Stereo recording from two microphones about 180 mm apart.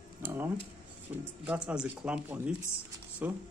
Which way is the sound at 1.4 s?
5° right (ahead or behind).